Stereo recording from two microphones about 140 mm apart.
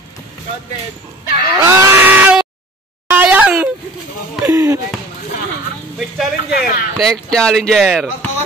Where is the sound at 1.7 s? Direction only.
20° right (ahead or behind).